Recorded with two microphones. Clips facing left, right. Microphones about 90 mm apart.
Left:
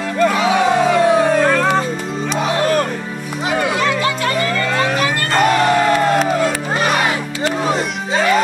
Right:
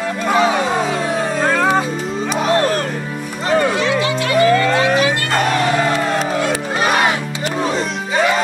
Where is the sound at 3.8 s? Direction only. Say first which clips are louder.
Even; 45° left (ahead or behind).